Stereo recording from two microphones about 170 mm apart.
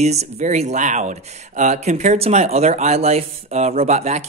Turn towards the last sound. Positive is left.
turn(degrees=-40)  # may be behind; listen again after turning